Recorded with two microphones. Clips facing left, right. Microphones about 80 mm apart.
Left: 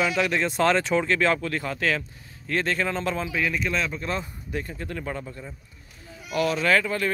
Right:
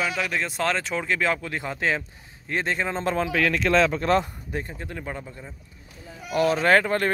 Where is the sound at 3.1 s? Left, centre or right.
Right.